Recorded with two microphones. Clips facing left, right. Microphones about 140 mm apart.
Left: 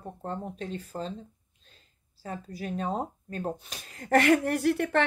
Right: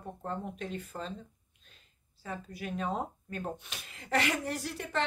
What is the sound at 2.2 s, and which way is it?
Speech, 35° left (ahead or behind).